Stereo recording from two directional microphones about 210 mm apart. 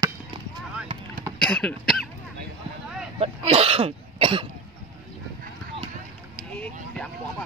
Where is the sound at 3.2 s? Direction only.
30° right (ahead or behind).